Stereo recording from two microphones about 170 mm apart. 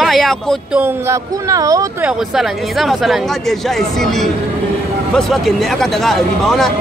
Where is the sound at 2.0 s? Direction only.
5° right (ahead or behind).